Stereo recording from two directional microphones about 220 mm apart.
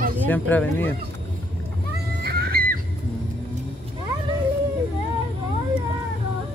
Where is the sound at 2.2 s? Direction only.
45° right (ahead or behind).